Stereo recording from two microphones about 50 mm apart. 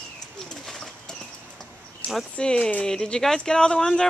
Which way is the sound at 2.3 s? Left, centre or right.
Centre.